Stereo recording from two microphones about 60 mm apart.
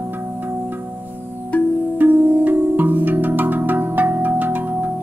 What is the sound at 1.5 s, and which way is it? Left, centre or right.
Music, left.